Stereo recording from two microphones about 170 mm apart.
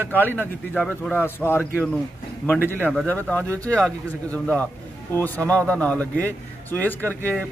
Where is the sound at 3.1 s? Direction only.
10° left (ahead or behind).